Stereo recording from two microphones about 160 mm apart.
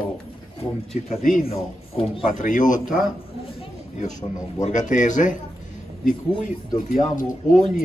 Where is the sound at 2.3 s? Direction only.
55° left (ahead or behind).